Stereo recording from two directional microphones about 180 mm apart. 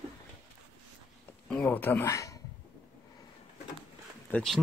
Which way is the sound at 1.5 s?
10° left (ahead or behind).